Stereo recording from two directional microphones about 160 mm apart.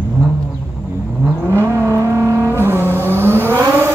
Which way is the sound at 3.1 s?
15° right (ahead or behind).